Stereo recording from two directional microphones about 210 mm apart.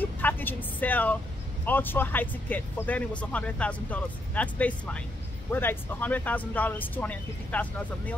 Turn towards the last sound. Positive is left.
turn(degrees=10)  # may be behind; listen again after turning